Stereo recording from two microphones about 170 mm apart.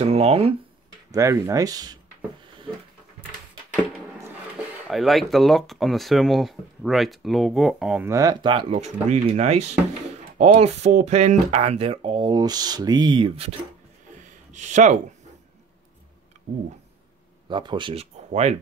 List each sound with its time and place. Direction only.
0.0 s speech: 35° right (ahead or behind)
1.1 s speech: 15° right (ahead or behind)
4.8 s speech: centre (ahead or behind)
8.0 s speech: 20° right (ahead or behind)
14.5 s speech: 45° right (ahead or behind)
17.5 s speech: 30° right (ahead or behind)